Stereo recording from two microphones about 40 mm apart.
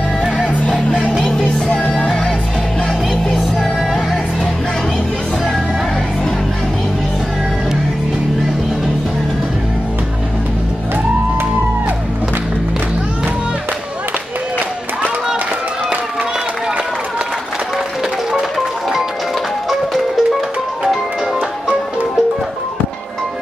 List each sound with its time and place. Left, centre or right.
0.7 s music: left
3.3 s music: centre
19.7 s music: centre